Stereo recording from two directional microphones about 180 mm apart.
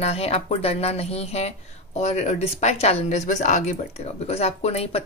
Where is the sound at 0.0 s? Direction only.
35° left (ahead or behind).